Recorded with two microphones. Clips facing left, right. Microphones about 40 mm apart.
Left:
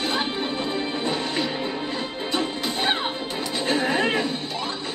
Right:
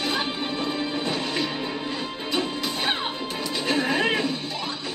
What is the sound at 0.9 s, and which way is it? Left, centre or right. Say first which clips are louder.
Music: left 1 dB; left.